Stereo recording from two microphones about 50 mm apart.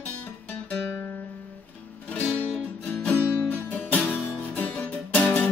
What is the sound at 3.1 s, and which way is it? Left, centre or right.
Music, left.